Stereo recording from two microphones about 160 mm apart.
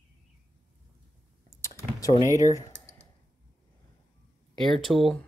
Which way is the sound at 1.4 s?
20° left (ahead or behind).